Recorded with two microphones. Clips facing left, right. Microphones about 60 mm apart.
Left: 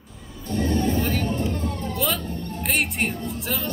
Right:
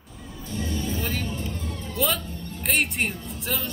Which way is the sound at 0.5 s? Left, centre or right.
Left.